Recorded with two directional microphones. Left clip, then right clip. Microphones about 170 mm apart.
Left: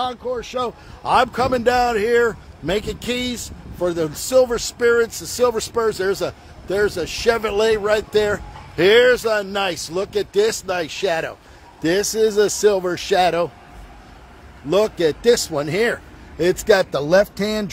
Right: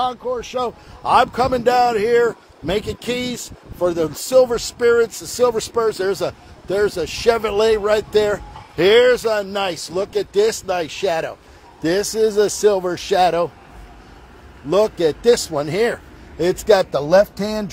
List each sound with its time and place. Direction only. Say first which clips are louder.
0.0 s a man's voice: right 2 dB; 5° left (ahead or behind)
14.7 s a man's voice: right 1 dB; 15° left (ahead or behind)